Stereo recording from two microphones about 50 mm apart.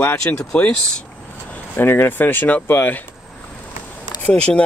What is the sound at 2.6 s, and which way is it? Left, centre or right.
Speech, left.